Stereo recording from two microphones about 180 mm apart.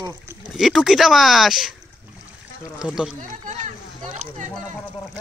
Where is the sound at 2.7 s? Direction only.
5° right (ahead or behind).